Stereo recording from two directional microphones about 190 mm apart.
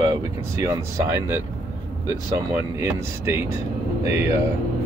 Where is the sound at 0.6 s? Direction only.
15° right (ahead or behind).